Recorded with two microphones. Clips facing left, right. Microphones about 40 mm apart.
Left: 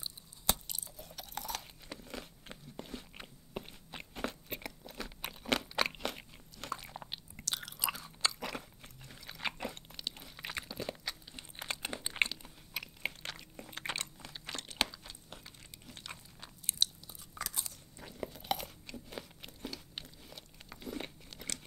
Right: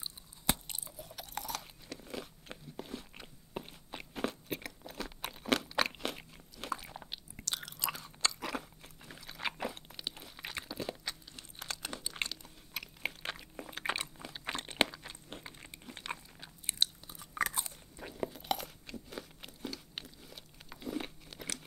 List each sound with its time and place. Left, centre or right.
0.5 s chewing: right
0.9 s chewing: centre
2.0 s biting: centre
3.5 s crunch: centre
7.3 s chewing: centre
9.3 s biting: centre
10.1 s chewing: centre
11.3 s crunch: left
12.3 s chewing: centre
13.4 s a sound: centre
14.4 s crunch: right
16.6 s biting: right
17.2 s chewing: right
17.9 s biting: centre